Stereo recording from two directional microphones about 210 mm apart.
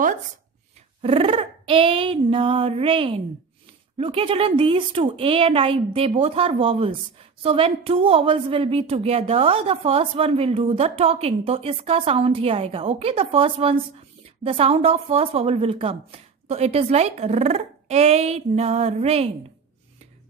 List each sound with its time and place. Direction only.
1.0 s a woman's voice: 25° right (ahead or behind)